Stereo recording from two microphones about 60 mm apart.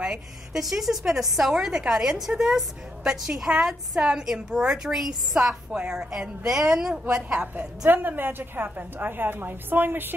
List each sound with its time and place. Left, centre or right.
0.5 s a woman's voice: centre
7.9 s a woman's voice: right